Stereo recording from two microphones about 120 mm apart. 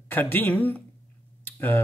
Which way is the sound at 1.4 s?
15° left (ahead or behind).